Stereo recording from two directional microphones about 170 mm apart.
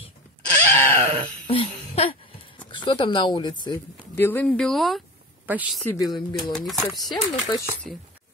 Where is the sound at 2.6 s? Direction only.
25° left (ahead or behind).